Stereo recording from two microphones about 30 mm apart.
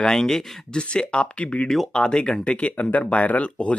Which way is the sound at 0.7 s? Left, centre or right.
Left.